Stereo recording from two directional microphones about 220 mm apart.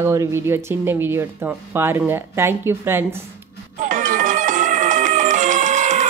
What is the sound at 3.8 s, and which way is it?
Music, 35° right (ahead or behind).